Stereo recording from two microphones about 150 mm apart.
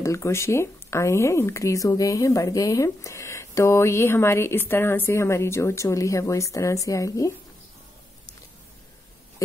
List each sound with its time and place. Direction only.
0.0 s speech: 20° left (ahead or behind)